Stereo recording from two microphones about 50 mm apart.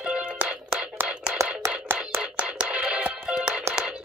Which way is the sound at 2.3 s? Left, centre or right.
Centre.